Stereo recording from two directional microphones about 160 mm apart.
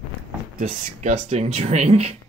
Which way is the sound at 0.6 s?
45° right (ahead or behind).